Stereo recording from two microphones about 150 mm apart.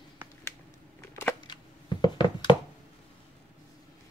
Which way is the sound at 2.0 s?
30° left (ahead or behind).